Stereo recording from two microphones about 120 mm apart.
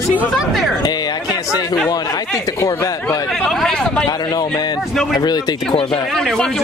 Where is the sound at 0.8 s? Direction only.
35° left (ahead or behind).